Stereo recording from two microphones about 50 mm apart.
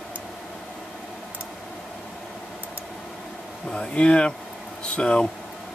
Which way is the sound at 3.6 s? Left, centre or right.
Left.